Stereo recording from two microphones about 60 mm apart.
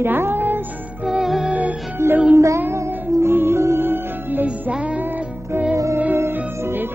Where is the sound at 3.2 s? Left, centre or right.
Right.